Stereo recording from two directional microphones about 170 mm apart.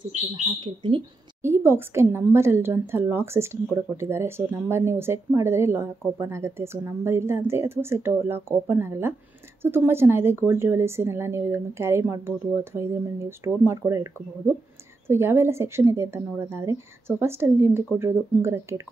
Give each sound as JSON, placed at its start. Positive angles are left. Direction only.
{"t": 0.5, "sound": "speech", "side_deg": -30}
{"t": 1.4, "sound": "a woman's voice", "side_deg": -15}